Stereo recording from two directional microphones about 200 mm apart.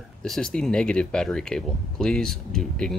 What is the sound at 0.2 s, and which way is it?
Speech, 5° left (ahead or behind).